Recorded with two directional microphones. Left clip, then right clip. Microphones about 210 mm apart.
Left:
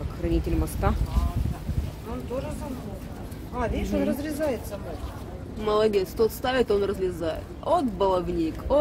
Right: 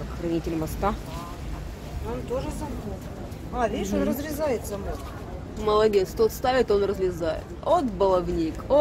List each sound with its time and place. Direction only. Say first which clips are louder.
0.3 s speech: even; 5° left (ahead or behind)
3.5 s speech: right 2 dB; 35° right (ahead or behind)
5.6 s speech: right 2 dB; centre (ahead or behind)